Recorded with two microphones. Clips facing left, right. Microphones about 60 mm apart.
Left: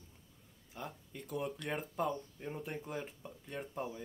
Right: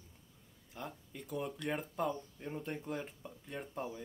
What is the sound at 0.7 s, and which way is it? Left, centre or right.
Speech, centre.